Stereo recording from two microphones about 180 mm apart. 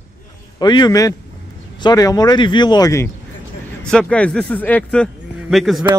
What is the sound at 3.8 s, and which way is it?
Speech, 5° left (ahead or behind).